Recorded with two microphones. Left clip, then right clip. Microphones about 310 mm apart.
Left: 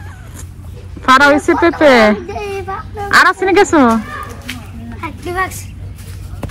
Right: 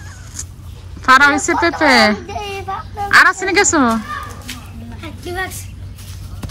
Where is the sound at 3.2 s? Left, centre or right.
Centre.